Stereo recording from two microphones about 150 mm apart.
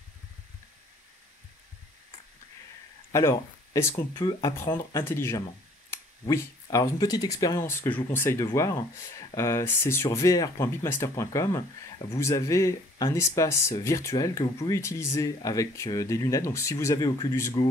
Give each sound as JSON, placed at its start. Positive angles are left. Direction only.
{"t": 3.1, "sound": "speech", "side_deg": 20}